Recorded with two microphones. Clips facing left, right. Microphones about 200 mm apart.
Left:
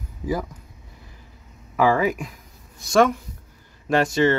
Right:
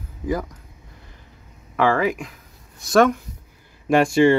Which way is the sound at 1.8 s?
5° left (ahead or behind).